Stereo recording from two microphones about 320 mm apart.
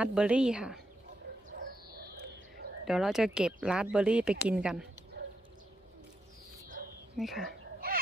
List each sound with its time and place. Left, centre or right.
0.0 s speech: centre
2.0 s music: right
2.8 s speech: centre
7.2 s speech: centre
7.4 s a sound: right